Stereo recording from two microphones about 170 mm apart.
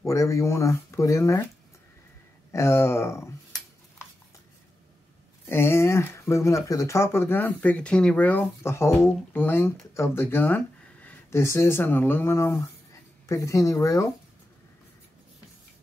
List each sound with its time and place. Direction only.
0.0 s speech: 20° left (ahead or behind)
2.5 s speech: 15° left (ahead or behind)
5.5 s speech: 15° left (ahead or behind)